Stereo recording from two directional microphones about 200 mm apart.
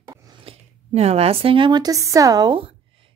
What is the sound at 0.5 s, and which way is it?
A woman's voice, 30° right (ahead or behind).